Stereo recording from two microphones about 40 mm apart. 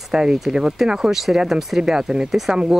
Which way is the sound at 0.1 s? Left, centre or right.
Centre.